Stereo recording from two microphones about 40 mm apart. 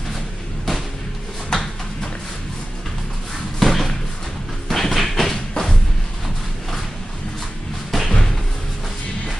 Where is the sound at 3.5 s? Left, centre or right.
Centre.